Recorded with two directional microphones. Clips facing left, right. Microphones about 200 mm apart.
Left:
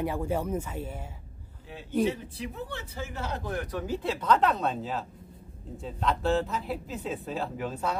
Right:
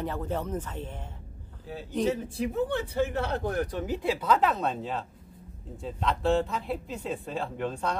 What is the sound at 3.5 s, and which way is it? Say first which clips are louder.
Speech: right 3 dB; 30° right (ahead or behind).